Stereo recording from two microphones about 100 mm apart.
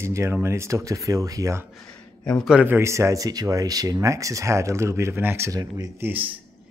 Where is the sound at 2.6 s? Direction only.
25° right (ahead or behind).